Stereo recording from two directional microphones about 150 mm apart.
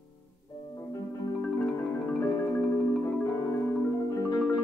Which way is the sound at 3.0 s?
20° left (ahead or behind).